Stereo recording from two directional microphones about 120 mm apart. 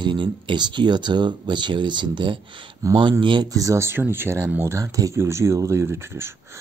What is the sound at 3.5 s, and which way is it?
Speech, 25° right (ahead or behind).